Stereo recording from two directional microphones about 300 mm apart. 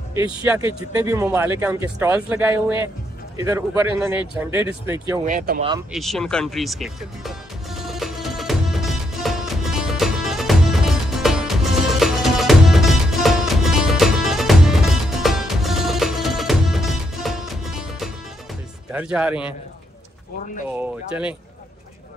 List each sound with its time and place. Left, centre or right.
0.4 s speech: centre
5.2 s speech: right
5.9 s music: centre
18.9 s speech: centre
20.7 s speech: centre